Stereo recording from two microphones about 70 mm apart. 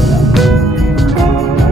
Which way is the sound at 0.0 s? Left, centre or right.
Centre.